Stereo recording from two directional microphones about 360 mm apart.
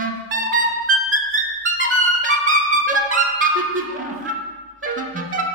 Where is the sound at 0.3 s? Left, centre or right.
Right.